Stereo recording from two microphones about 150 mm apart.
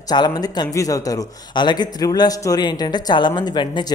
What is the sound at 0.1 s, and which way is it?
Speech, 25° left (ahead or behind).